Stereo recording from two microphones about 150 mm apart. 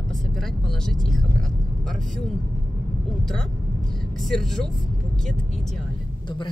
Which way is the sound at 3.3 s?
5° left (ahead or behind).